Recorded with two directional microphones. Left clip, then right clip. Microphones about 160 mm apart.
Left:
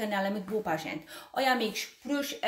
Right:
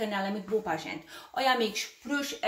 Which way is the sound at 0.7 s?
45° left (ahead or behind).